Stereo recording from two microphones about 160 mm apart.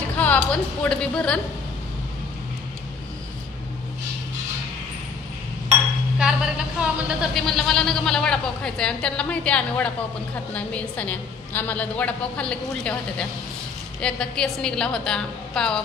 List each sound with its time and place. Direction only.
0.2 s speech: 10° left (ahead or behind)
6.1 s a woman's voice: 5° right (ahead or behind)